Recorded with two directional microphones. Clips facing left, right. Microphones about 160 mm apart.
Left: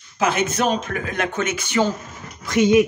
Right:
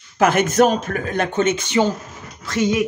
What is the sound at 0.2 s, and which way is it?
Speech, 50° right (ahead or behind).